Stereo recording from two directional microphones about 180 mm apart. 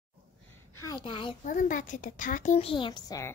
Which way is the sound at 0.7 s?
20° left (ahead or behind).